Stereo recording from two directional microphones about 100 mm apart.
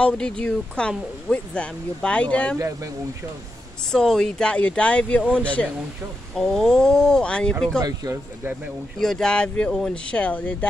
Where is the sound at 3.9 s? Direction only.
5° left (ahead or behind).